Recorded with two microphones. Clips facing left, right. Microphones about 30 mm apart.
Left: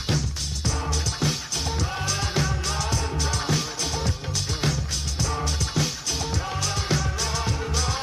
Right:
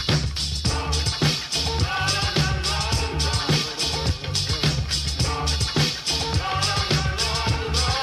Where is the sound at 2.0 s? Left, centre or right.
Right.